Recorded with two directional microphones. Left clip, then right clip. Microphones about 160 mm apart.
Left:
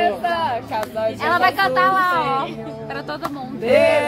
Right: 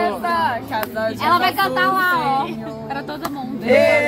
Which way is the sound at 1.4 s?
25° left (ahead or behind).